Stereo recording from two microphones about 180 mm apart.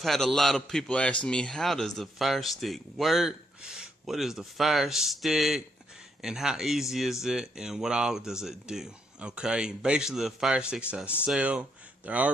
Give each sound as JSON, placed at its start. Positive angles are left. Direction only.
{"t": 0.0, "sound": "a man's voice", "side_deg": 0}